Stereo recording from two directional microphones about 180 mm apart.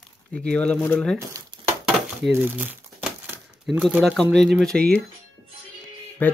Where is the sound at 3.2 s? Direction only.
10° right (ahead or behind).